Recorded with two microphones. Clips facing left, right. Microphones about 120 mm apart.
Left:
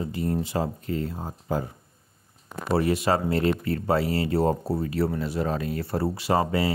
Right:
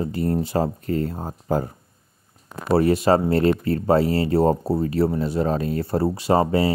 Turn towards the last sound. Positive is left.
turn(degrees=-30)  # may be behind; listen again after turning